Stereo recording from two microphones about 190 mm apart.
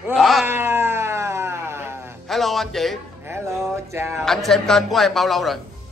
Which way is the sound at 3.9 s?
15° right (ahead or behind).